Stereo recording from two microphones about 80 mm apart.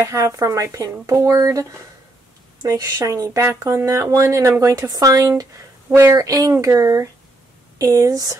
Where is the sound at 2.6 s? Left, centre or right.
Right.